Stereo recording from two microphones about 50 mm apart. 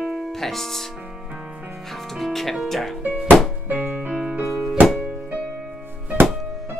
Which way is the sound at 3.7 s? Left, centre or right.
Centre.